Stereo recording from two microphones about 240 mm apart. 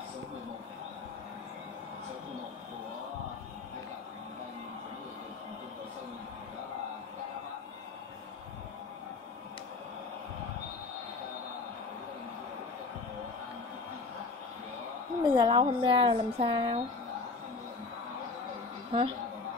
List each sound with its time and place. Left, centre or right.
15.2 s speech: centre
18.9 s a woman's voice: right